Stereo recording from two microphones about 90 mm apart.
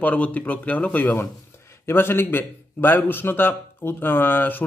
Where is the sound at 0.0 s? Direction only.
15° left (ahead or behind).